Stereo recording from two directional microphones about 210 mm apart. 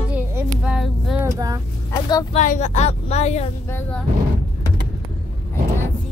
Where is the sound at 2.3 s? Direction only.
35° left (ahead or behind).